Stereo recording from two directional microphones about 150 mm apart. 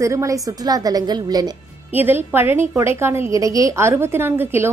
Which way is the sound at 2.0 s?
15° right (ahead or behind).